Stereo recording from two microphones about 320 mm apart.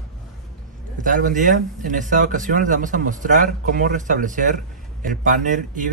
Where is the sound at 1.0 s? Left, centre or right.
Right.